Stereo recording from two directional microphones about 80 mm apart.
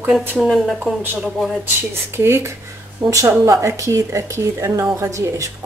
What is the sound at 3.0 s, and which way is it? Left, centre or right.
Speech, right.